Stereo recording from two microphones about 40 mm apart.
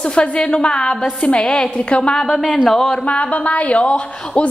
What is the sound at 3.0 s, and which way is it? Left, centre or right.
A woman's voice, left.